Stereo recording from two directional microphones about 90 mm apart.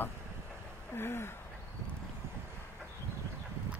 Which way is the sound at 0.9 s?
25° left (ahead or behind).